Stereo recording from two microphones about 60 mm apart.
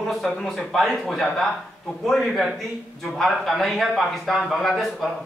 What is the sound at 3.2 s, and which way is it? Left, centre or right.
Speech, centre.